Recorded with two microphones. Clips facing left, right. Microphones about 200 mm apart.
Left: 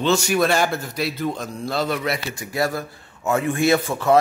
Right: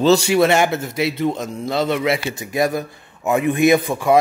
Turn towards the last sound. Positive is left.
turn(degrees=-15)  # may be behind; listen again after turning